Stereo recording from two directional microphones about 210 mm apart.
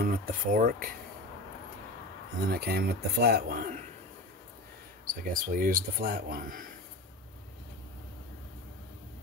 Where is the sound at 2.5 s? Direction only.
50° right (ahead or behind).